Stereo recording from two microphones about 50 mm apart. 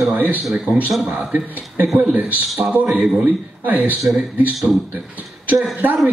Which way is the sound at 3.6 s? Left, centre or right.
Right.